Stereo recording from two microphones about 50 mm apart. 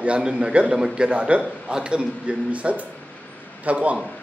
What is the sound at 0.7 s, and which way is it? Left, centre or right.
Speech, centre.